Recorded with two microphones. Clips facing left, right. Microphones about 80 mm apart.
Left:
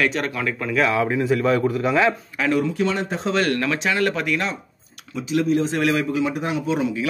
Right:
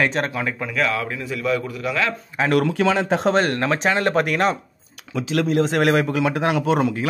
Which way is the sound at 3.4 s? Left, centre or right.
Right.